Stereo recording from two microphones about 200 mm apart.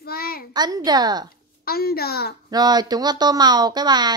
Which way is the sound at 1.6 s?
50° left (ahead or behind).